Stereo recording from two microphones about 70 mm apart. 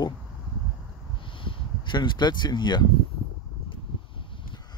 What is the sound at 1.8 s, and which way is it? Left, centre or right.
Speech, left.